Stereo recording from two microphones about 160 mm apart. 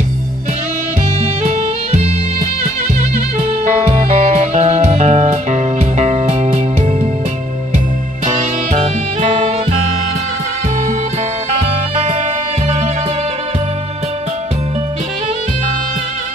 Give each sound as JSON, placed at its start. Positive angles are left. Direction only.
{"t": 3.9, "sound": "music", "side_deg": -45}
{"t": 8.3, "sound": "music", "side_deg": -50}